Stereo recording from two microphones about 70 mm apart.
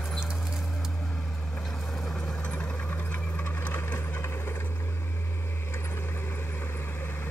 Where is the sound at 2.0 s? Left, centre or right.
Centre; by 4.5 s left.